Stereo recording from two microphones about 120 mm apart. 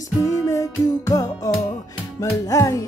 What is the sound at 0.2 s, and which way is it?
Music, 25° left (ahead or behind).